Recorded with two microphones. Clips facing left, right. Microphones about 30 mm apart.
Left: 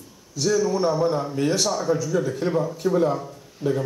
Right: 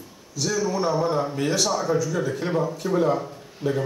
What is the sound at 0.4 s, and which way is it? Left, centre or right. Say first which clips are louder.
Speech: left 3 dB; centre.